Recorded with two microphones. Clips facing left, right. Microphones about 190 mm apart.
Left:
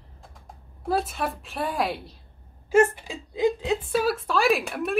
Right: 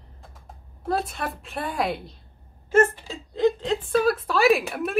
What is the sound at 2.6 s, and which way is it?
A woman's voice, 15° left (ahead or behind).